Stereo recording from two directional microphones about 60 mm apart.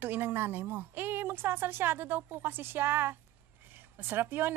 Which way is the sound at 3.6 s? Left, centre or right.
Right.